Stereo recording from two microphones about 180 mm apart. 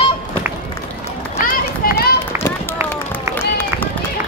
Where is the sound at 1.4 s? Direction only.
55° left (ahead or behind).